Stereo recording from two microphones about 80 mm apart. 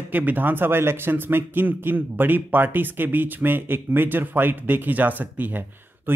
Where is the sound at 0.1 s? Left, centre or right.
Right.